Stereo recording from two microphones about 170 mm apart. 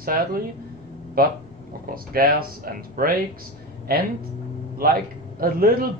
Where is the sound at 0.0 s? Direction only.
60° right (ahead or behind).